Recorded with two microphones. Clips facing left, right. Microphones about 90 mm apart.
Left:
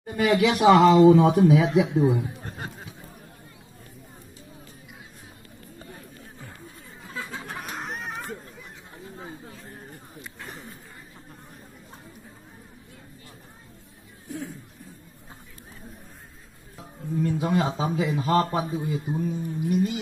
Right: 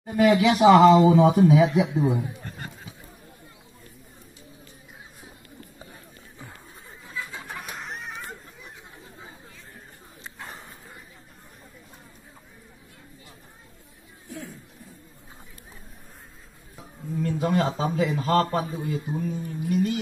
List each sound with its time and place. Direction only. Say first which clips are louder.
0.0 s speech: right 2 dB; centre (ahead or behind)
7.8 s a sound: left 3 dB; 45° left (ahead or behind)
17.2 s a man's voice: even; 15° left (ahead or behind)